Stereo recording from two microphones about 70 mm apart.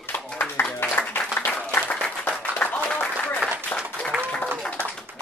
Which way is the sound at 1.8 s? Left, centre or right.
Left.